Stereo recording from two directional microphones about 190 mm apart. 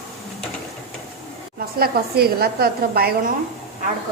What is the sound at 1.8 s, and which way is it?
A woman's voice, 55° right (ahead or behind).